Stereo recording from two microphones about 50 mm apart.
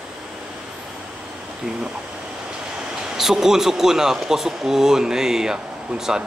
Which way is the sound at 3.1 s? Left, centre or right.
Centre.